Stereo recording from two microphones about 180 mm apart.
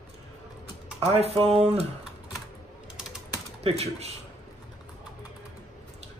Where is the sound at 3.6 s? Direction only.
35° right (ahead or behind).